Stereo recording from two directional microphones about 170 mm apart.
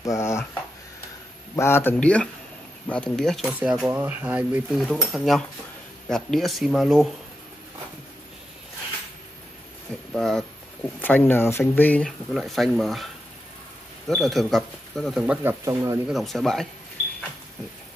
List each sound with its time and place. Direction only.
0.0 s a sound: 20° left (ahead or behind)
1.5 s speech: 15° left (ahead or behind); by 7.1 s centre (ahead or behind)
10.1 s speech: centre (ahead or behind)
15.6 s speech: 20° right (ahead or behind)
16.1 s speech: centre (ahead or behind)